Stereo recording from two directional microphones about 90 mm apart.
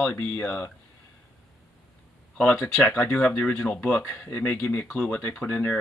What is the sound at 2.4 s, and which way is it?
Speech, 15° left (ahead or behind).